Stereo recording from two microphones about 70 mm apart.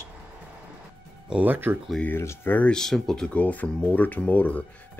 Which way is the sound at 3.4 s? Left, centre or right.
Left.